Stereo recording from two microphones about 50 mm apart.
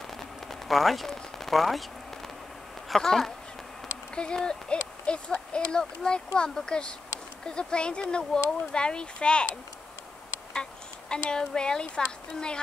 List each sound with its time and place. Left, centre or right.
0.5 s speech: centre
2.9 s speech: centre
10.5 s speech: centre